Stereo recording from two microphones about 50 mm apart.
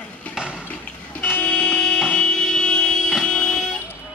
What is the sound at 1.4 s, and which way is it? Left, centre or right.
Vehicle, centre.